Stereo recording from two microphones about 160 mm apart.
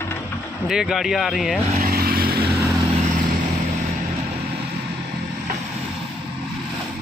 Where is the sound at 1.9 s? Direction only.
70° right (ahead or behind).